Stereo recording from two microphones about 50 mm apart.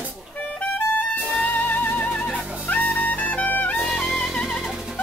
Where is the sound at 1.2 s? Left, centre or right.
Centre.